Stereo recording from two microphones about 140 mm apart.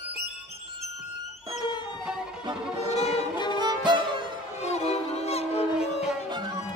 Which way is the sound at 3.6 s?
35° right (ahead or behind).